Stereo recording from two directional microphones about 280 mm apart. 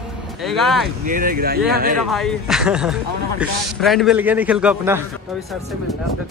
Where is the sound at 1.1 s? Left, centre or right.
Right.